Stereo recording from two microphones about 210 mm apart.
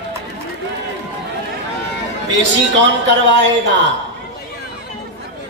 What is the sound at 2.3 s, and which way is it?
A man's voice, 60° right (ahead or behind).